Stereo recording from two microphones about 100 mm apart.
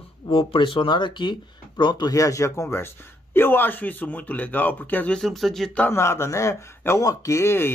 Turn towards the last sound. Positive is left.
turn(degrees=25)  # may be behind; listen again after turning